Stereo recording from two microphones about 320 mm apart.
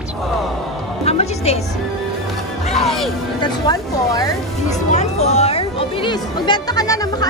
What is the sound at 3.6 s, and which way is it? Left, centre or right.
Speech, centre.